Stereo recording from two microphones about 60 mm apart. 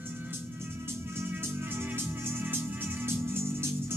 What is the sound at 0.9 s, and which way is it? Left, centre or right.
Music, right.